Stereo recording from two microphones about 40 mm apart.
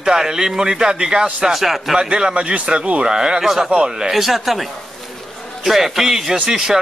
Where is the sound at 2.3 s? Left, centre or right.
Right.